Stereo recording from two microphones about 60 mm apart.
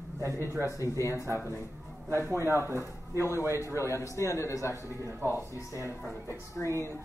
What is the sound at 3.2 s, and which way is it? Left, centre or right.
Speech, left.